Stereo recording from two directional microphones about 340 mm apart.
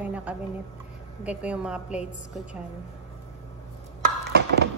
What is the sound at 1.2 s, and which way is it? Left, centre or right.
Speech, centre.